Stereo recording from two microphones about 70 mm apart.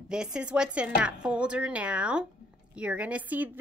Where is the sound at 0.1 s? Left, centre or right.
Centre.